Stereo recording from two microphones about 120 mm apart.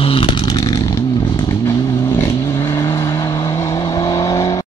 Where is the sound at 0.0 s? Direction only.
50° left (ahead or behind).